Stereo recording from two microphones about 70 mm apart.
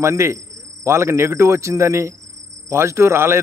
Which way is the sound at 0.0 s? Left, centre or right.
Right.